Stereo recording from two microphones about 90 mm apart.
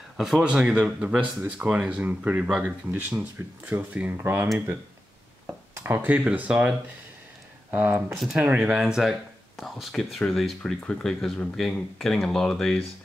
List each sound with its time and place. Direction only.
0.2 s speech: 10° right (ahead or behind); by 4.5 s 25° right (ahead or behind)
5.8 s a sound: 25° right (ahead or behind)
6.0 s speech: 15° right (ahead or behind)
7.7 s speech: 20° right (ahead or behind)
8.1 s speech: centre (ahead or behind)